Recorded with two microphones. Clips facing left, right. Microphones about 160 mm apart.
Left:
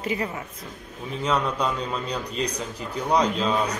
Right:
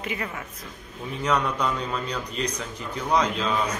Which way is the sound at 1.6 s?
35° left (ahead or behind).